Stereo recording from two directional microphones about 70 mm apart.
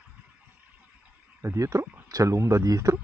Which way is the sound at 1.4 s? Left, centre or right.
Right.